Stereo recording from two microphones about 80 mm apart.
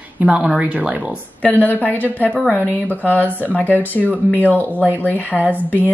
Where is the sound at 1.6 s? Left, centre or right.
Left.